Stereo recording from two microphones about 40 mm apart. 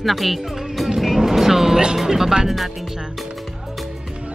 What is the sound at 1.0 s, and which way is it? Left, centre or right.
Vehicle, centre.